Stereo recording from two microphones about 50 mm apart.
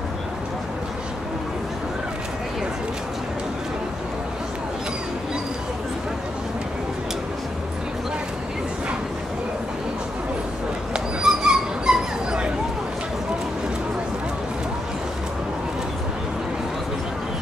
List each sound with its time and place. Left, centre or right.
10.9 s dog: centre